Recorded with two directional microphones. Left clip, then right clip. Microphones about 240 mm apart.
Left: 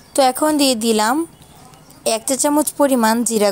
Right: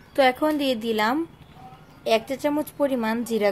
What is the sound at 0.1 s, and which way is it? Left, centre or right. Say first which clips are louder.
Speech: left 5 dB; left.